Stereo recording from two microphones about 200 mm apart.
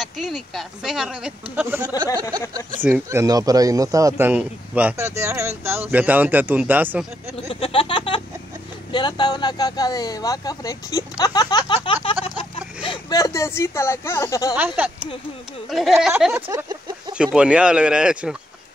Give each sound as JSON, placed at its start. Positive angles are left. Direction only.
{"t": 0.0, "sound": "a man's voice", "side_deg": 0}
{"t": 7.4, "sound": "a sound", "side_deg": 30}
{"t": 8.9, "sound": "speech", "side_deg": 20}
{"t": 14.8, "sound": "a man's voice", "side_deg": -10}